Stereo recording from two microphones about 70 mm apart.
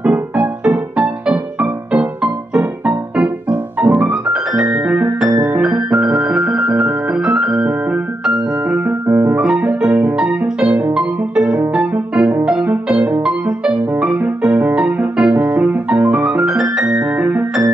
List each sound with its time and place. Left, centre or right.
0.0 s music: right
5.6 s piano: centre
10.9 s music: centre
16.5 s music: centre
16.8 s piano: centre